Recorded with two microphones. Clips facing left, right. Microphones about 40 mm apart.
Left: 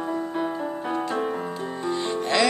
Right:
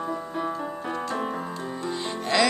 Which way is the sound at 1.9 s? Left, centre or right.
Centre.